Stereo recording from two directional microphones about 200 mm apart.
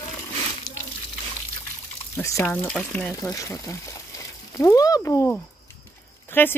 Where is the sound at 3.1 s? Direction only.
15° left (ahead or behind).